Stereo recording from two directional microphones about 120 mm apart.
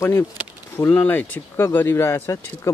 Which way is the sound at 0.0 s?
20° left (ahead or behind).